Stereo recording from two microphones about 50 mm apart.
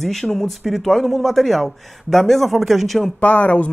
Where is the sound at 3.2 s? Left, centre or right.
Left.